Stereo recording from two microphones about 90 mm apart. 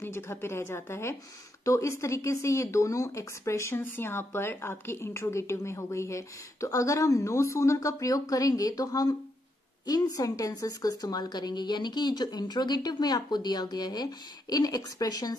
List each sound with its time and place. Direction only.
0.0 s a woman's voice: 30° left (ahead or behind); by 15.3 s 45° left (ahead or behind)